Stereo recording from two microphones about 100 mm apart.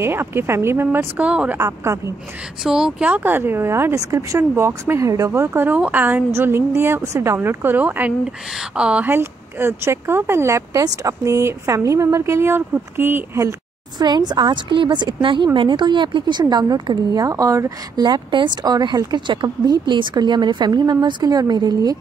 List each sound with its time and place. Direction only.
0.0 s speech: 25° right (ahead or behind)
0.9 s speech: 15° right (ahead or behind)
1.6 s speech: 30° right (ahead or behind)
2.6 s speech: 5° right (ahead or behind)
3.1 s speech: 20° right (ahead or behind)
13.9 s speech: 45° right (ahead or behind)